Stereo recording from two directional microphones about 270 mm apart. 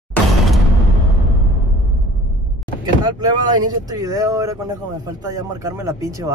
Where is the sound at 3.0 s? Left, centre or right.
Centre.